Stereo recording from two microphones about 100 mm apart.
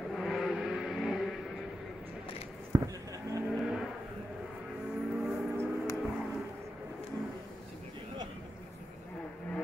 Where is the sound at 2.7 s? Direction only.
35° right (ahead or behind).